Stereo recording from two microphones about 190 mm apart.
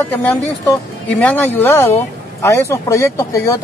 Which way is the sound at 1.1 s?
10° left (ahead or behind).